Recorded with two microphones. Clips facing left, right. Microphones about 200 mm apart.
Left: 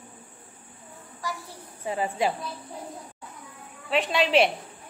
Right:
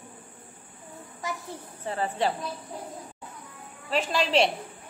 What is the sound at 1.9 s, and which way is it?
Speech, 10° left (ahead or behind).